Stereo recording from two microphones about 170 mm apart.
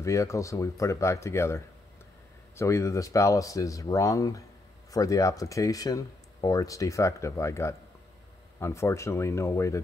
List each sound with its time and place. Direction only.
0.0 s speech: 15° left (ahead or behind)